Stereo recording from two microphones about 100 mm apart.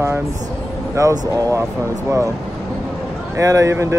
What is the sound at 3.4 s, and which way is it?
Speech, 35° right (ahead or behind).